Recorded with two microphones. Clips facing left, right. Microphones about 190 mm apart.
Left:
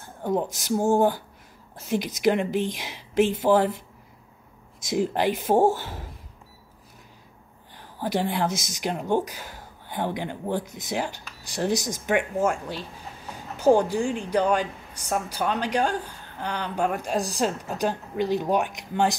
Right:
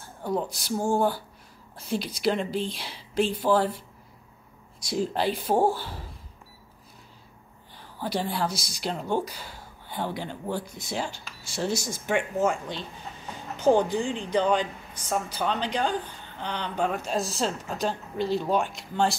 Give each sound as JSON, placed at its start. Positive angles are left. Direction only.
{"t": 0.0, "sound": "speech", "side_deg": 15}
{"t": 2.2, "sound": "a woman's voice", "side_deg": 15}
{"t": 4.8, "sound": "a woman's voice", "side_deg": 15}
{"t": 8.0, "sound": "a woman's voice", "side_deg": 15}